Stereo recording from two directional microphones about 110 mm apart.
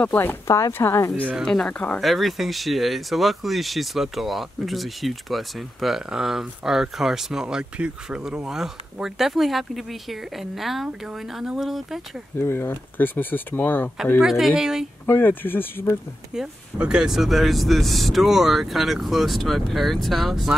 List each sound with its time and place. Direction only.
0.0 s speech: 15° left (ahead or behind)
1.4 s speech: 5° left (ahead or behind)
2.0 s speech: centre (ahead or behind)
12.4 s speech: 20° left (ahead or behind)
14.2 s speech: 5° right (ahead or behind)
15.0 s speech: 20° left (ahead or behind)
16.3 s speech: 10° right (ahead or behind)